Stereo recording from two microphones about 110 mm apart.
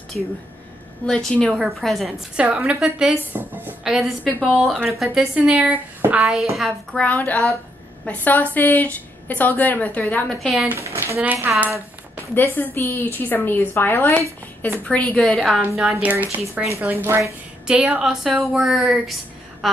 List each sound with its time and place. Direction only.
0.2 s a woman's voice: centre (ahead or behind)
3.3 s a woman's voice: 20° right (ahead or behind)
3.8 s a woman's voice: 5° right (ahead or behind)
6.5 s a woman's voice: centre (ahead or behind)
7.0 s a woman's voice: 15° left (ahead or behind)
10.4 s a woman's voice: centre (ahead or behind)
10.7 s speech: 25° right (ahead or behind)
12.4 s a woman's voice: 20° left (ahead or behind); by 16.0 s centre (ahead or behind)
16.0 s a woman's voice: 15° right (ahead or behind)
17.2 s a woman's voice: 10° right (ahead or behind)
18.1 s a woman's voice: centre (ahead or behind)